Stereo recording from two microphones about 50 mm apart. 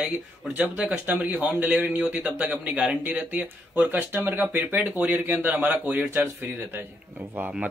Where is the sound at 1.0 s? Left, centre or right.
Right.